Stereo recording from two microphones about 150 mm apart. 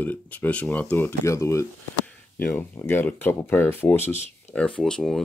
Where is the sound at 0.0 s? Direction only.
10° left (ahead or behind).